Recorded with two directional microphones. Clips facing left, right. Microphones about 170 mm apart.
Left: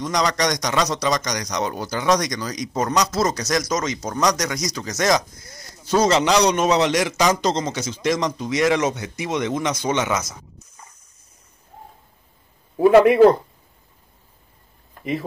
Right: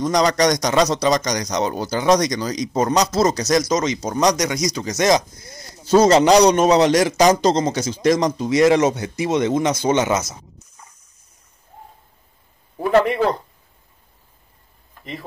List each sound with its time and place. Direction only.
0.0 s a man's voice: 35° right (ahead or behind)
6.0 s a man's voice: 40° right (ahead or behind)